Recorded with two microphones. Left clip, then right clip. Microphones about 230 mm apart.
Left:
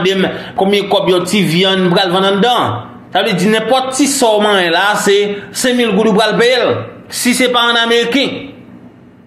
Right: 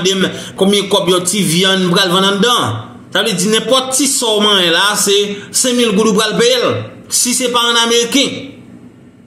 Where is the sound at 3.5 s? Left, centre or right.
Right.